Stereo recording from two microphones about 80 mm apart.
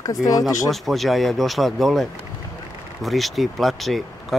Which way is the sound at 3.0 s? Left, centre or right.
Centre.